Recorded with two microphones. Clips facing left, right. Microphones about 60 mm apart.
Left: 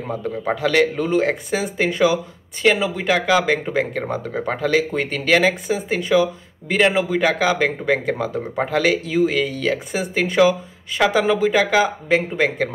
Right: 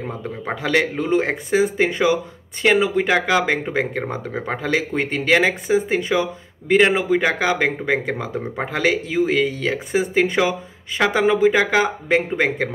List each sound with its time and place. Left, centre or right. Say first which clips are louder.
0.2 s speech: left 6 dB; right
4.3 s speech: left 2 dB; centre
4.6 s speech: left 2 dB; right